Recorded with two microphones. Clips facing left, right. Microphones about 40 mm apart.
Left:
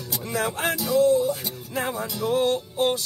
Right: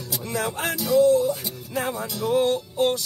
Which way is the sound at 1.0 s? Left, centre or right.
Centre.